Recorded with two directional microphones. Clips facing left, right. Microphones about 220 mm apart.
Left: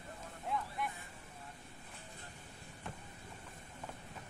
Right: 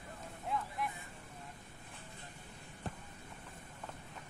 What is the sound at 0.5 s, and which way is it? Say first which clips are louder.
Vehicle: right 1 dB; centre (ahead or behind).